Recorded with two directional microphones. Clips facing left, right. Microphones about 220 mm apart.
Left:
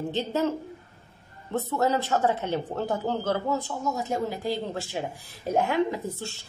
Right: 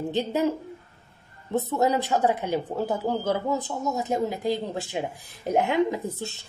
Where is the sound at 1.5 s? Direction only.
15° right (ahead or behind).